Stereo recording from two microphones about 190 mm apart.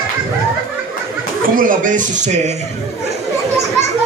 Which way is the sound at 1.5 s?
45° right (ahead or behind).